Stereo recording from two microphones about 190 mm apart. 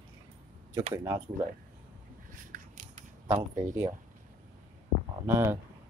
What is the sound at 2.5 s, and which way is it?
Scissors, 40° right (ahead or behind).